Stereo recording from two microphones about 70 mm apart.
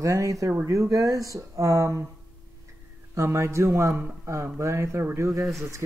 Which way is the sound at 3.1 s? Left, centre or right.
Right.